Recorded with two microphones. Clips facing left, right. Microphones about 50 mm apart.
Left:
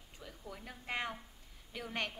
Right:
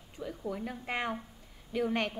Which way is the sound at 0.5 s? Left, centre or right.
Centre.